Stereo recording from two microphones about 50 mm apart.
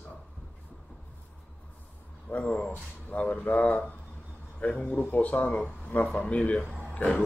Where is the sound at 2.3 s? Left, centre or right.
Left.